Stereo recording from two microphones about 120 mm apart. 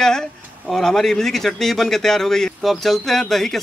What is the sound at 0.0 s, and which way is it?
Speech, 5° left (ahead or behind).